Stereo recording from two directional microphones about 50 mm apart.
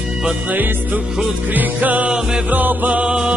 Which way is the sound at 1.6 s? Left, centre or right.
Right.